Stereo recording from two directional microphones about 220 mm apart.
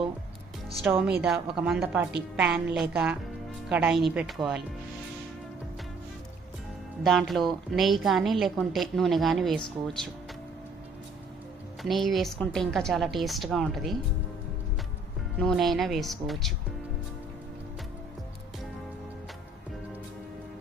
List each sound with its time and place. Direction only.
0.8 s a woman's voice: centre (ahead or behind)
7.0 s a woman's voice: centre (ahead or behind)
11.8 s a woman's voice: centre (ahead or behind)
15.3 s a woman's voice: centre (ahead or behind)